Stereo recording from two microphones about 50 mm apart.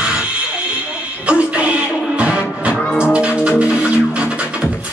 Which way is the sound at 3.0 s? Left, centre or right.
Right.